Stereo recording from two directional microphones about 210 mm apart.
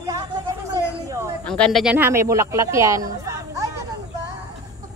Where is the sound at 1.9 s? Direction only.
10° right (ahead or behind).